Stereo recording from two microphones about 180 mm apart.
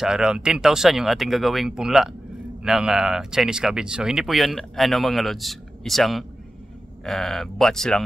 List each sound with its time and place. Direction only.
0.0 s speech: 5° right (ahead or behind)